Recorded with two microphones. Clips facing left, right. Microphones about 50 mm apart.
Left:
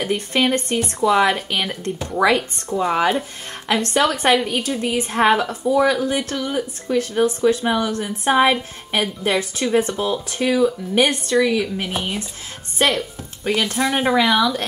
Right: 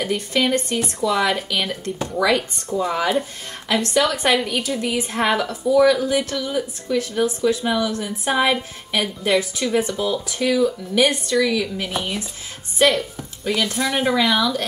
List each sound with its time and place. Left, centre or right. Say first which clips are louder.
0.0 s speech: left 1 dB; left
11.9 s speech: even; centre
12.7 s a sound: right 2 dB; left
13.7 s speech: left 3 dB; centre
14.2 s speech: left 2 dB; centre